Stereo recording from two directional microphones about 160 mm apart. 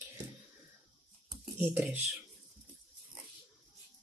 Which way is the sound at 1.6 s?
10° right (ahead or behind).